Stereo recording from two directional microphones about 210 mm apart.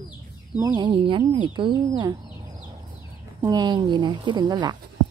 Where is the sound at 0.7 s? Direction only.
25° right (ahead or behind).